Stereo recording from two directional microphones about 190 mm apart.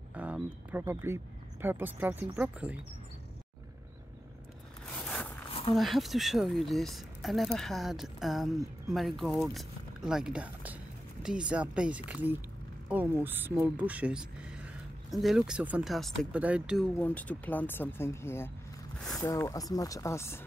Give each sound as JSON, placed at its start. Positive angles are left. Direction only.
{"t": 0.1, "sound": "speech", "side_deg": -10}
{"t": 4.9, "sound": "a sound", "side_deg": 10}
{"t": 5.5, "sound": "dog", "side_deg": 30}
{"t": 5.8, "sound": "speech", "side_deg": 0}